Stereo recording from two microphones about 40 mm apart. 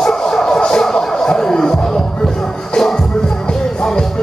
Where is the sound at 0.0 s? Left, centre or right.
Centre.